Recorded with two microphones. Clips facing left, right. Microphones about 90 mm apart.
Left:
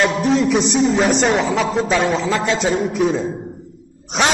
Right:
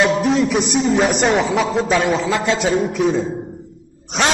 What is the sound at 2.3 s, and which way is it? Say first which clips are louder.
Speech: even; 15° right (ahead or behind).